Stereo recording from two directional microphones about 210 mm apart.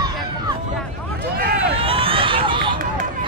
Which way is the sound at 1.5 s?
50° right (ahead or behind).